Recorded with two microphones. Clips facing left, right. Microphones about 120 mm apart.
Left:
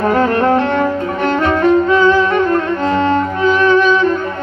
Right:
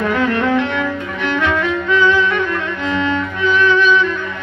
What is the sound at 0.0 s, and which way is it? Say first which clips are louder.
Music: left 4 dB; 40° left (ahead or behind).